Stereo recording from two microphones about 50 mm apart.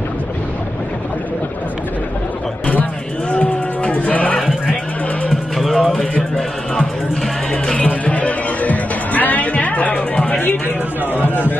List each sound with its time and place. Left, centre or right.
2.6 s music: left
5.3 s music: centre
7.7 s music: left